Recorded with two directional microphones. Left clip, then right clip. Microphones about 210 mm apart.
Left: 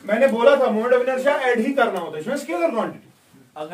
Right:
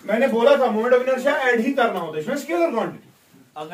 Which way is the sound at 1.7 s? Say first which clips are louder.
Even; 25° left (ahead or behind).